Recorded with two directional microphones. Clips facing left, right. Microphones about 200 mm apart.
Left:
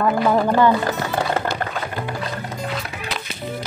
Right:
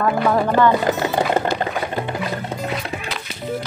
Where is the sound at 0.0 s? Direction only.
5° left (ahead or behind).